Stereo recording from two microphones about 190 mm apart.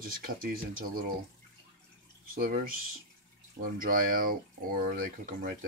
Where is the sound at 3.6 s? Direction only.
50° right (ahead or behind).